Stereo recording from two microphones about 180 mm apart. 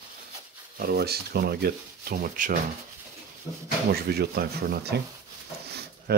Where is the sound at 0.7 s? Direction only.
60° right (ahead or behind).